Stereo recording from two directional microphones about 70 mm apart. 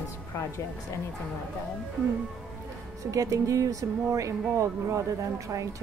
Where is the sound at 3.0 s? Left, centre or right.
Right.